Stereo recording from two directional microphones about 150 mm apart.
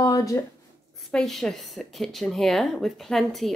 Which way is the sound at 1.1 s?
Centre (ahead or behind).